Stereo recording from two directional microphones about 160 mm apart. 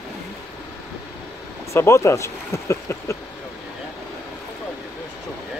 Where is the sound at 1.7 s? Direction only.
20° left (ahead or behind).